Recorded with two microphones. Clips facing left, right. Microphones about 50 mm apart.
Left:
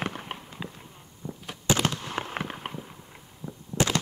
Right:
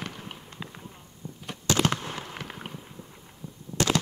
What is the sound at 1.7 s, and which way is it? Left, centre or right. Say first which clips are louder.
Fireworks: even; centre.